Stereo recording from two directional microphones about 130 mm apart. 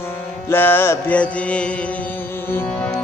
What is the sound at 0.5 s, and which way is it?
Music, 15° left (ahead or behind).